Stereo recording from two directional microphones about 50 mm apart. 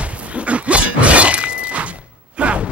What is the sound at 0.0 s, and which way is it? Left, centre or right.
Shatter, right.